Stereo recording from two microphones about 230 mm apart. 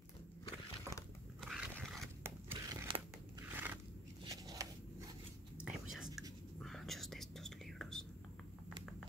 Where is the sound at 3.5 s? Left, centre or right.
Centre.